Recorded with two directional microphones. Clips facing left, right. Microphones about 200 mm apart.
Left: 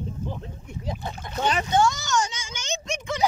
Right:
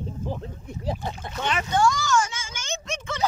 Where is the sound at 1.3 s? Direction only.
40° left (ahead or behind).